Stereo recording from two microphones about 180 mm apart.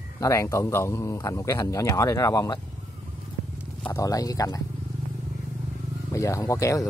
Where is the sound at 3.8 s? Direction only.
15° left (ahead or behind).